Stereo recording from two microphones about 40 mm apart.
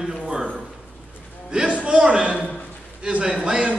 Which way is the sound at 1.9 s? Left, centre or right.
Right.